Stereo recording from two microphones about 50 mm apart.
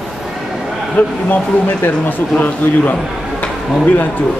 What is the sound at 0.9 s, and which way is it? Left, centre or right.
A man's voice, left.